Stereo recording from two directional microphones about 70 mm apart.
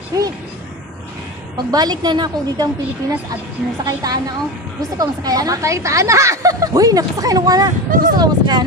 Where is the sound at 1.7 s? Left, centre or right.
Right.